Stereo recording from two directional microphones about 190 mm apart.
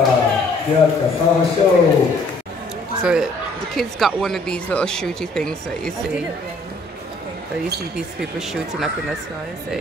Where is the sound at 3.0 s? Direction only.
5° right (ahead or behind).